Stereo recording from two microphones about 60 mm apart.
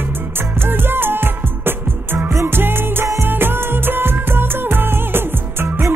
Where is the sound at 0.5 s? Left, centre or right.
Right.